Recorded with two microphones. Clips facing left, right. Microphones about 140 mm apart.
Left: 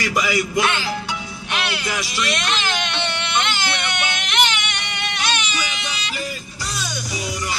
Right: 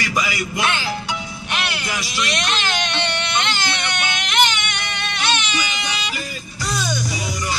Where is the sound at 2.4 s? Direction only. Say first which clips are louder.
Even; 5° left (ahead or behind).